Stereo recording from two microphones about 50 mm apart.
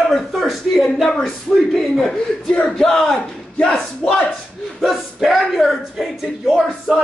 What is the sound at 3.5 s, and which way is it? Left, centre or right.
Battle cry, centre.